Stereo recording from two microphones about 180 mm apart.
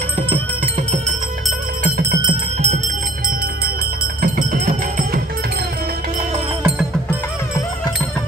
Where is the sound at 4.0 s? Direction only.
50° right (ahead or behind).